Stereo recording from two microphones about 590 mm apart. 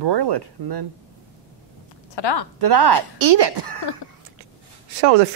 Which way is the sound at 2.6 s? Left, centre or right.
Right.